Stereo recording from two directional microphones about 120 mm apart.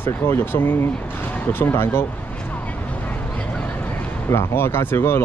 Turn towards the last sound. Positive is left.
turn(degrees=20)  # may be behind; listen again after turning